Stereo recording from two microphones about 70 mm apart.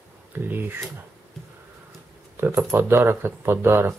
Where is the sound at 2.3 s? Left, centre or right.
Right.